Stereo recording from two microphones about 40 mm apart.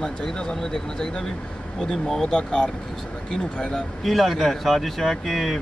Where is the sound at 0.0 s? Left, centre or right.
Centre.